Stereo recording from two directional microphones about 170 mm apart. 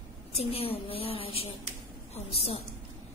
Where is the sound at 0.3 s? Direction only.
35° left (ahead or behind).